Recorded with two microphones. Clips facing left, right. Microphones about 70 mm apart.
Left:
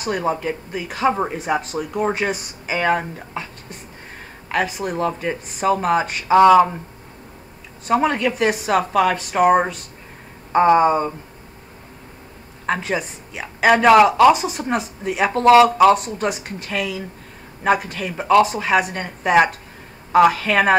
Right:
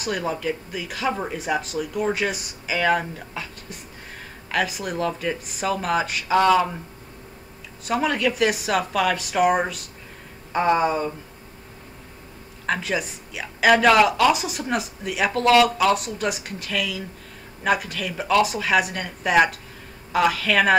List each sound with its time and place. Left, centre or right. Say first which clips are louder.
0.0 s speech: left 4 dB; left
1.4 s speech: left 3 dB; left
4.7 s speech: left 3 dB; left
6.3 s speech: left 7 dB; left
7.8 s speech: left 4 dB; left
12.8 s speech: left 2 dB; left
14.3 s speech: left 4 dB; left